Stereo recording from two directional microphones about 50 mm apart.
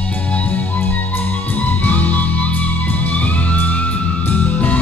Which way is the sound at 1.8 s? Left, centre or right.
Left.